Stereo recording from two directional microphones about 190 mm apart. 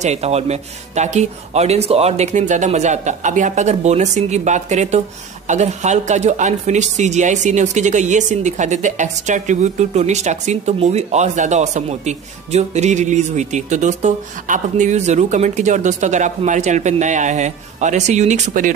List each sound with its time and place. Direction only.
0.0 s speech: 35° right (ahead or behind)